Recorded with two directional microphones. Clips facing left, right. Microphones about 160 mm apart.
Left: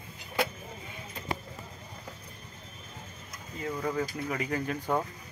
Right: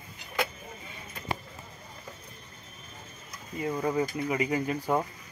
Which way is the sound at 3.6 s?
15° right (ahead or behind).